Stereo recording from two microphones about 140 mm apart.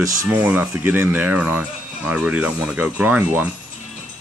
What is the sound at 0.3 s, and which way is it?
Speech, 15° right (ahead or behind).